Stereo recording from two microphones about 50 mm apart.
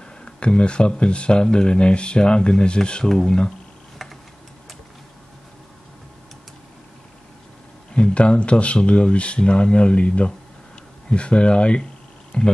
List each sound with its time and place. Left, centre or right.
0.2 s speech: centre
7.9 s speech: left